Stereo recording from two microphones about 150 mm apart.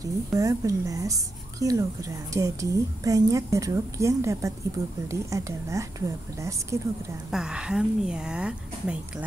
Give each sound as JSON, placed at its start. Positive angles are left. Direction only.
{"t": 0.0, "sound": "speech", "side_deg": -20}
{"t": 7.2, "sound": "speech", "side_deg": -5}